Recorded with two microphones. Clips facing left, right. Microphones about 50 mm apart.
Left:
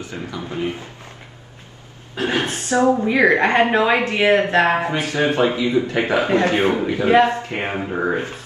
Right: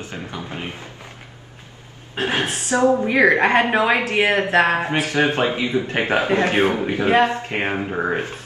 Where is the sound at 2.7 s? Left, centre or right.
Right.